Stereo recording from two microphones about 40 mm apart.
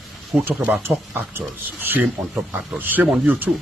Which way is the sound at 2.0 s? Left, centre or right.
Right.